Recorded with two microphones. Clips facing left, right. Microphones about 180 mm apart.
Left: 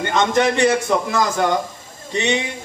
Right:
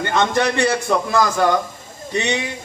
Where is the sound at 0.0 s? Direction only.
20° left (ahead or behind).